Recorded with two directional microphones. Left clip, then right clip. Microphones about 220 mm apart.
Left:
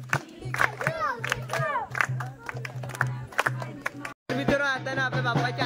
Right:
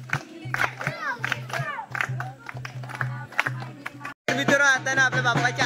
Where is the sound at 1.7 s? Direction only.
25° left (ahead or behind).